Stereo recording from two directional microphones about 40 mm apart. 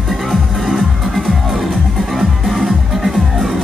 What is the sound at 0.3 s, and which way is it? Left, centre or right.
Music, centre.